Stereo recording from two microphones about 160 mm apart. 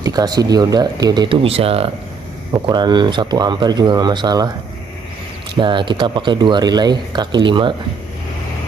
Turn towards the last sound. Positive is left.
turn(degrees=-30)  # may be behind; listen again after turning